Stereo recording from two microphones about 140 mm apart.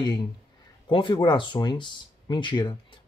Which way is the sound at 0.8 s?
35° left (ahead or behind).